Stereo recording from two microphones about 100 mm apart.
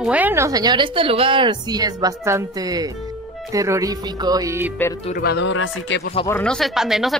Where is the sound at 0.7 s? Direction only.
65° right (ahead or behind).